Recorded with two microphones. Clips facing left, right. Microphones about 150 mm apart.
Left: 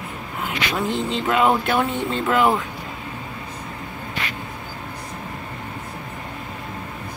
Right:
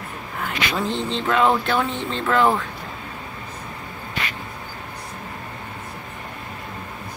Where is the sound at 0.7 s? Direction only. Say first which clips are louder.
Left 2 dB; 5° left (ahead or behind).